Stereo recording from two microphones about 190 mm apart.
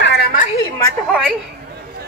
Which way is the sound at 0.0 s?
65° left (ahead or behind).